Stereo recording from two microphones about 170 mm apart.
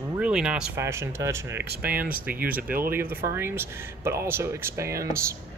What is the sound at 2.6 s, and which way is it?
Speech, 55° right (ahead or behind).